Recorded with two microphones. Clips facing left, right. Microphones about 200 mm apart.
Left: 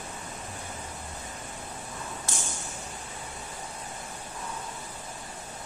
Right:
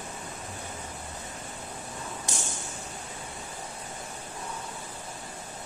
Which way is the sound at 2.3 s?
15° right (ahead or behind).